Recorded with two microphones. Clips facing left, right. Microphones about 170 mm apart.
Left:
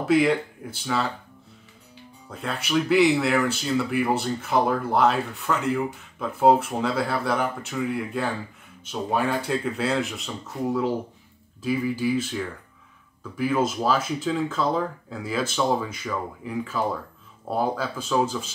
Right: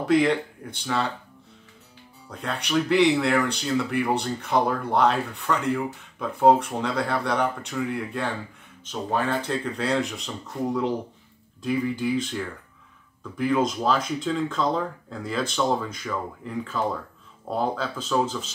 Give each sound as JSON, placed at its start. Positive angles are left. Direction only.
{"t": 0.0, "sound": "speech", "side_deg": 5}
{"t": 2.2, "sound": "speech", "side_deg": 5}